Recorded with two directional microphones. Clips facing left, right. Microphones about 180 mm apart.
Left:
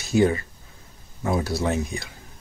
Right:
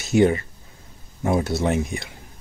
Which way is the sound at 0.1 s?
20° right (ahead or behind).